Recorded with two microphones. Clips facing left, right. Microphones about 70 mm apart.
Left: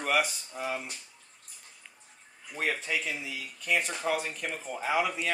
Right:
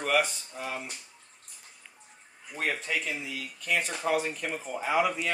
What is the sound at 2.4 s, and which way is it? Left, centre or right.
Speech, centre.